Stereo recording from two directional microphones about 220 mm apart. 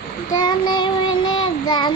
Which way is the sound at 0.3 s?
20° left (ahead or behind).